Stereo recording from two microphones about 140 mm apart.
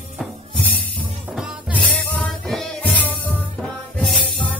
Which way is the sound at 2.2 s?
5° left (ahead or behind).